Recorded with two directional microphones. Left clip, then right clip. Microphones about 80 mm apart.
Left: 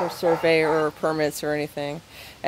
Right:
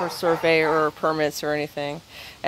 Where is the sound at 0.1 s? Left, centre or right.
Centre.